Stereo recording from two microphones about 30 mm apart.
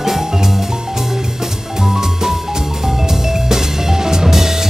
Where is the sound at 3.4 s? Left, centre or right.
Centre.